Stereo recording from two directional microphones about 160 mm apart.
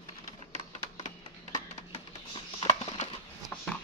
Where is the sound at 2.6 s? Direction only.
30° left (ahead or behind).